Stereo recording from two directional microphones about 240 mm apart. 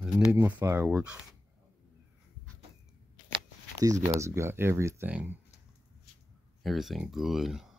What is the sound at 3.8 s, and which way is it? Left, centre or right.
Speech, centre.